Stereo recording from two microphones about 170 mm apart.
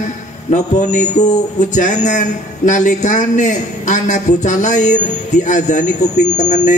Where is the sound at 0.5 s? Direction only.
45° left (ahead or behind).